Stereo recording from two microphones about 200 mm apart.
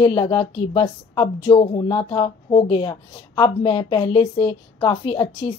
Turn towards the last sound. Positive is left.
turn(degrees=25)  # may be behind; listen again after turning